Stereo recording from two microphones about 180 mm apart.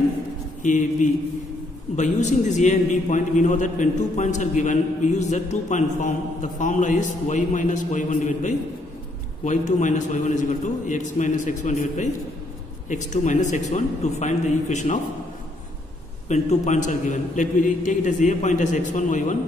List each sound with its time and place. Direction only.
0.6 s a man's voice: 45° left (ahead or behind)
16.3 s a man's voice: 40° left (ahead or behind)